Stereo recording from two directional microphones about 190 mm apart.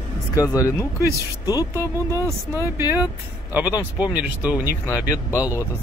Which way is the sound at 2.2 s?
15° right (ahead or behind).